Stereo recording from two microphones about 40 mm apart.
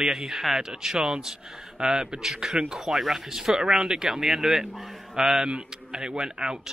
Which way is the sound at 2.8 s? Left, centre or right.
Centre.